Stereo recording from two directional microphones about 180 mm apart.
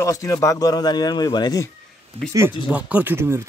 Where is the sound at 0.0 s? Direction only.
15° left (ahead or behind).